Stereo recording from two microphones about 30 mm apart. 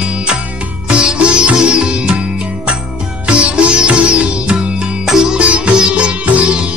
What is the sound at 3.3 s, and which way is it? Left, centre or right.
Sitar, right.